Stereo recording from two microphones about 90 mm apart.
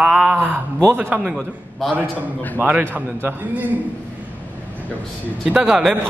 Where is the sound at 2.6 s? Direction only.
20° right (ahead or behind).